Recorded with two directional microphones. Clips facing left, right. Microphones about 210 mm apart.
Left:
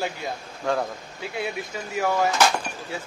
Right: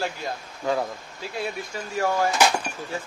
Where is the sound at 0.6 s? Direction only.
5° right (ahead or behind).